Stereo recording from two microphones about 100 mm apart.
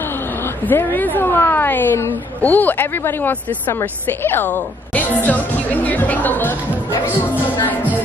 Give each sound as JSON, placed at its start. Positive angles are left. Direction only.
{"t": 0.7, "sound": "a woman's voice", "side_deg": 20}